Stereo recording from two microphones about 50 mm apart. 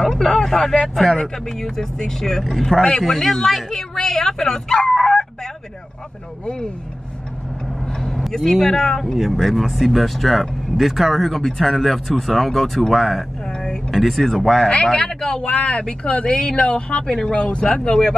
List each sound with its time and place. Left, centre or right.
0.0 s speech: centre
4.7 s chicken: centre
8.0 s speech: centre
13.5 s a sound: centre
13.8 s speech: centre
17.3 s speech: left